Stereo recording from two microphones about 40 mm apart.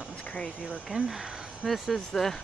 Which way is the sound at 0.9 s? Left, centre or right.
Right.